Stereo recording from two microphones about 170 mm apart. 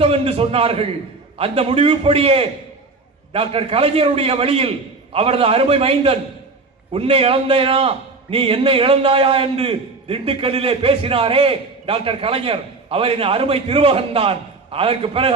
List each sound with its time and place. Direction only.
0.0 s a man's voice: 35° right (ahead or behind)